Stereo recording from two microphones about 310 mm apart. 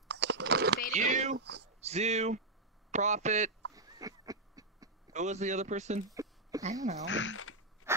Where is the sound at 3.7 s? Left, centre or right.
Centre.